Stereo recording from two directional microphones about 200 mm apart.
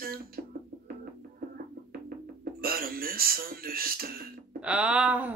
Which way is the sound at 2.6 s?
50° right (ahead or behind).